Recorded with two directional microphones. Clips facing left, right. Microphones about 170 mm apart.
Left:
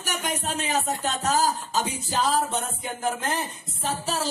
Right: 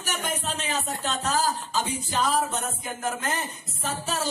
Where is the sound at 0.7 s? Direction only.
45° left (ahead or behind).